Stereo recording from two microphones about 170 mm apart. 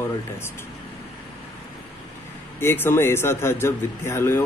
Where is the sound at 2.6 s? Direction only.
15° left (ahead or behind).